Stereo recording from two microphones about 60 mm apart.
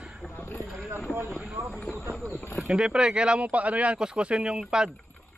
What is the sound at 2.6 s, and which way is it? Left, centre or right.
Speech, centre.